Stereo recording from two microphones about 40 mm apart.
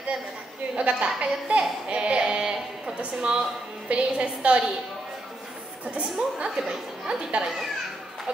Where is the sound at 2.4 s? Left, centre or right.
Centre.